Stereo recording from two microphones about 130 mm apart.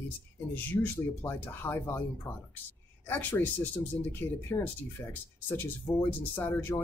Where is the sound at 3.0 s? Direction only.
15° left (ahead or behind).